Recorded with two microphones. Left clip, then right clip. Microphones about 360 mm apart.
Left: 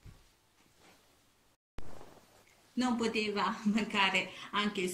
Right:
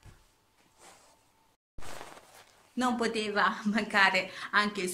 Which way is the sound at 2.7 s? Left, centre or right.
Centre.